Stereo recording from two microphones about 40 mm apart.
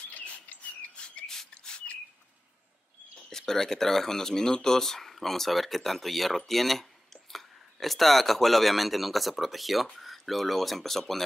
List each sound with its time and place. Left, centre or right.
0.1 s bird: left
1.2 s a sound: centre
1.5 s bird: left
3.3 s speech: centre